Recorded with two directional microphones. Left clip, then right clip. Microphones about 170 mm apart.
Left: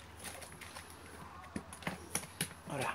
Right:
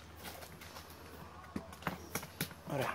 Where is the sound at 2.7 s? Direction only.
45° right (ahead or behind).